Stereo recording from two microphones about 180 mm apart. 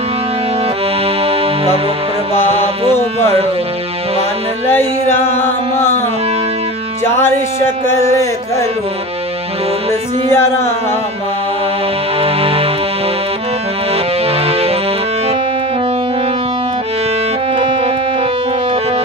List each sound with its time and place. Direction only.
1.0 s music: 35° right (ahead or behind)
5.4 s speech: 15° left (ahead or behind)
7.1 s speech: 15° left (ahead or behind)
10.3 s speech: 15° left (ahead or behind)
12.2 s music: 30° right (ahead or behind)
13.9 s music: 35° right (ahead or behind)
17.6 s music: 30° right (ahead or behind)